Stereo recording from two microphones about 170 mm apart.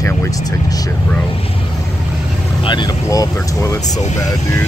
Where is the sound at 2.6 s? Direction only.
25° left (ahead or behind).